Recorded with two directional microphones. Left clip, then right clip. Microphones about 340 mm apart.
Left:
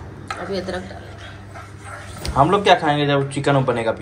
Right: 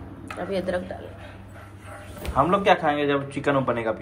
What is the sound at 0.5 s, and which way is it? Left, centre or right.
Speech, right.